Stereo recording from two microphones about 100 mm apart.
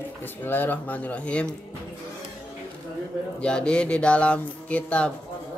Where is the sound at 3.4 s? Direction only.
10° left (ahead or behind).